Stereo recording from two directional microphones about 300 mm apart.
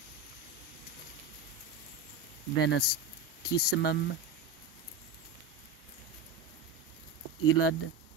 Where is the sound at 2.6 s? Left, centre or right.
Left.